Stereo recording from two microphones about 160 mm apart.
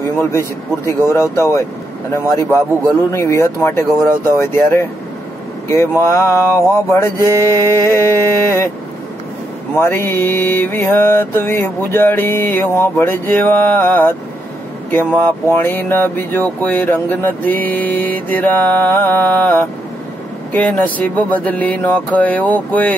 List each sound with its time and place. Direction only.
0.0 s speech: 20° left (ahead or behind)
9.8 s speech: 15° left (ahead or behind)